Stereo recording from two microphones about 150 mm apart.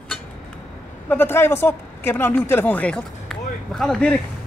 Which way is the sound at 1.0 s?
15° left (ahead or behind).